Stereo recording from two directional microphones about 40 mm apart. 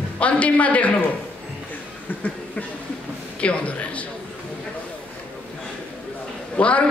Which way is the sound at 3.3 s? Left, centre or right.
Left.